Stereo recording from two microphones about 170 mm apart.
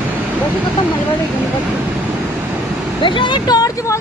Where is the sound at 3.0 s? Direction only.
30° left (ahead or behind).